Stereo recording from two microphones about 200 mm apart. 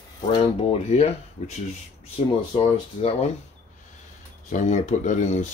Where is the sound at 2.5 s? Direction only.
30° left (ahead or behind).